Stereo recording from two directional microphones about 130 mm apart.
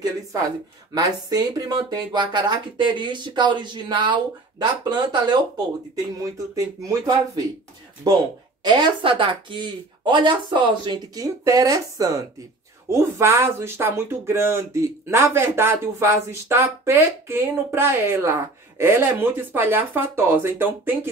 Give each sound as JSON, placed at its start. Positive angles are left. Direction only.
{"t": 0.0, "sound": "a woman's voice", "side_deg": -30}
{"t": 11.4, "sound": "speech", "side_deg": -25}